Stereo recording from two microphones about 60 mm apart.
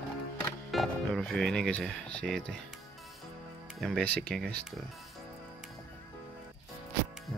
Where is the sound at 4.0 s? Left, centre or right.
Centre.